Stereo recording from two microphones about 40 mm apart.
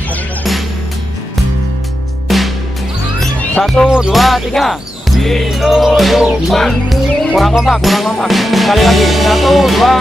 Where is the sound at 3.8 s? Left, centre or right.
Right.